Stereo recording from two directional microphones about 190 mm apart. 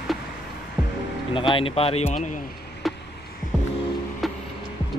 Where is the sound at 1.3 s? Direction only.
25° left (ahead or behind).